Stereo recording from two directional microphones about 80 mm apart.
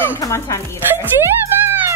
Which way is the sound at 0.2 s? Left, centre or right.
Left.